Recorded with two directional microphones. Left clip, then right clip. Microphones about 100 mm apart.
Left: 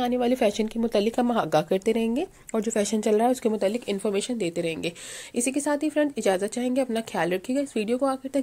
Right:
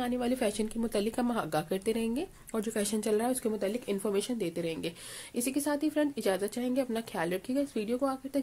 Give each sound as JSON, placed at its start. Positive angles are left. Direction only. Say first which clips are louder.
{"t": 0.0, "sound": "a woman's voice", "louder": "left 8 dB", "side_deg": 25}
{"t": 4.0, "sound": "a woman's voice", "louder": "left 5 dB", "side_deg": 25}